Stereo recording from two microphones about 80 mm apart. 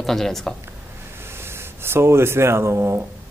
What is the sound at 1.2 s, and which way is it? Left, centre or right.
Speech, right.